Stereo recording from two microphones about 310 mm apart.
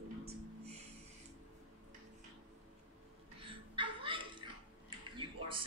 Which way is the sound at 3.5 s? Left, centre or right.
Centre.